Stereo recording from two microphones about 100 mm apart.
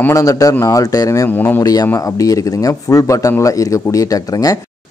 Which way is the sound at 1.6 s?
40° left (ahead or behind).